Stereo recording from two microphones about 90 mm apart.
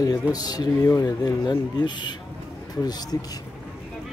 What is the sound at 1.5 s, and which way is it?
Speech, 55° left (ahead or behind).